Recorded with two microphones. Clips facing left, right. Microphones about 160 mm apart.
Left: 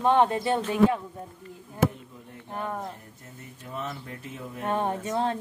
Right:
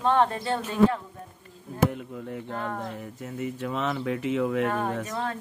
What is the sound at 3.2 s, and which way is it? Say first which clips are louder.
Speech: right 14 dB; 90° right.